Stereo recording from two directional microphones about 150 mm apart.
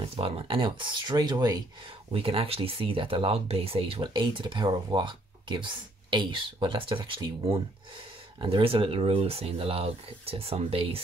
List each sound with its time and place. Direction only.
0.0 s speech: 40° right (ahead or behind)
2.1 s speech: 40° right (ahead or behind)